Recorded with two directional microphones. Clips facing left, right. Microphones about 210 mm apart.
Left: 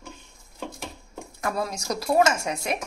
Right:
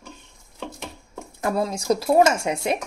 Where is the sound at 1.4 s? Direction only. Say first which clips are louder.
Right 5 dB; 25° right (ahead or behind).